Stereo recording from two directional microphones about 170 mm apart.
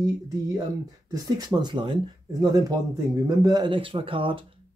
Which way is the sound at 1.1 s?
25° right (ahead or behind).